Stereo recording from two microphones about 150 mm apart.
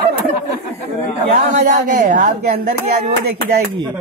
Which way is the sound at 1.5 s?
55° right (ahead or behind).